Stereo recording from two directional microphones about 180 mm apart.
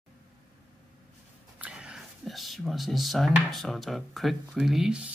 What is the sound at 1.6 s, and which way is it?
Speech, 5° right (ahead or behind).